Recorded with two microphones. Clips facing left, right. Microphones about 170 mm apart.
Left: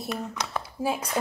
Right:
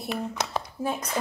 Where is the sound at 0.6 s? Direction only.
5° left (ahead or behind).